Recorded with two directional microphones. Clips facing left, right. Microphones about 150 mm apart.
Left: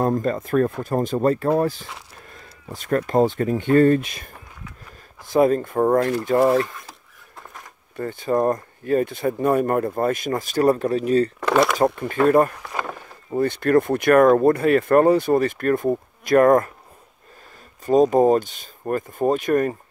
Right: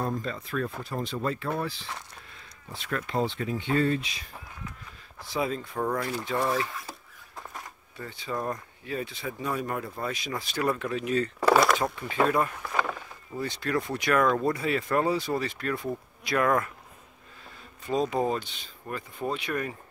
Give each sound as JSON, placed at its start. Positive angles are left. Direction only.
{"t": 0.0, "sound": "speech", "side_deg": 50}
{"t": 6.6, "sound": "speech", "side_deg": -5}
{"t": 7.9, "sound": "speech", "side_deg": 50}
{"t": 11.3, "sound": "speech", "side_deg": -5}
{"t": 11.8, "sound": "speech", "side_deg": 50}
{"t": 12.6, "sound": "rowboat", "side_deg": 0}
{"t": 13.3, "sound": "speech", "side_deg": 55}
{"t": 17.8, "sound": "speech", "side_deg": 45}